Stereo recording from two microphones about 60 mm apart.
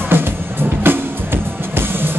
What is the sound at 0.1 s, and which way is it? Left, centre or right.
Music, right.